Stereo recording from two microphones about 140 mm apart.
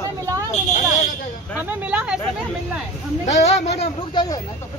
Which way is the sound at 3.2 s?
55° left (ahead or behind).